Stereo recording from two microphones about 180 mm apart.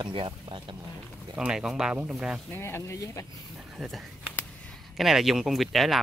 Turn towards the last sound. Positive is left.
turn(degrees=0)  # may be behind; listen again after turning